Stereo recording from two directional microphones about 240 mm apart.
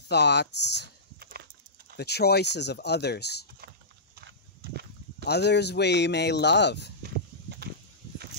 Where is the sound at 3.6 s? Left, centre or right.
Right.